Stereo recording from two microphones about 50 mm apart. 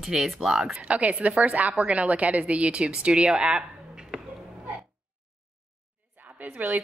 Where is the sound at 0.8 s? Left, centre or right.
Right.